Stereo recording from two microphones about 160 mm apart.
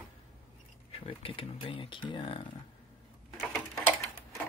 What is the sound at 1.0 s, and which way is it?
Speech, 35° left (ahead or behind).